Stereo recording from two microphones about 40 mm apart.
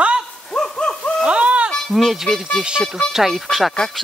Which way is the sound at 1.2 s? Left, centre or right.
Right.